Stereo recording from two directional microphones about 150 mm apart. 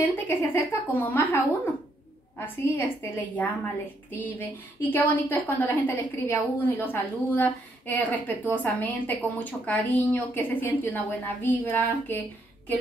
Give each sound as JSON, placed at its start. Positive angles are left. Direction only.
{"t": 0.0, "sound": "a woman's voice", "side_deg": 15}